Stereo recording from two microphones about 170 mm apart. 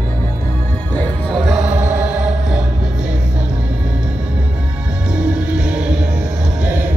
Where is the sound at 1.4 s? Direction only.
5° right (ahead or behind).